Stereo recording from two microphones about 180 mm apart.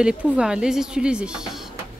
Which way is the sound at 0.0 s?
5° right (ahead or behind).